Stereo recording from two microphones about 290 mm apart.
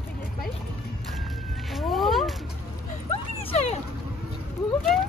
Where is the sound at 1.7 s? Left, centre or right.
Centre.